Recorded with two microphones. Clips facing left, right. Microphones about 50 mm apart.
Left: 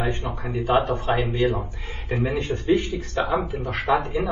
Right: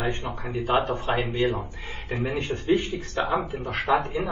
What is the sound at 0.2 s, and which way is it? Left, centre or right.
Speech, left.